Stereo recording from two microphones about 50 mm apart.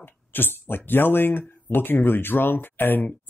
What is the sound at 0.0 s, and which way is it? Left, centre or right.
Speech, left.